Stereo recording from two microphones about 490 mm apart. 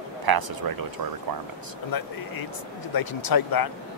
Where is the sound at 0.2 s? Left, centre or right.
Right.